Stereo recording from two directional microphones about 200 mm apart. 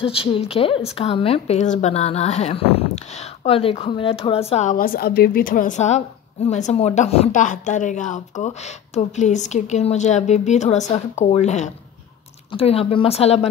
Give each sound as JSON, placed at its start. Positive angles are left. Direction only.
{"t": 0.0, "sound": "a woman's voice", "side_deg": 30}